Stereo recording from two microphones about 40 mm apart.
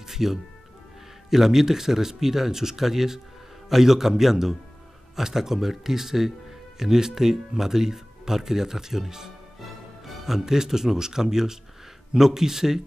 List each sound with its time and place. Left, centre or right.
0.0 s music: centre
1.3 s a man's voice: centre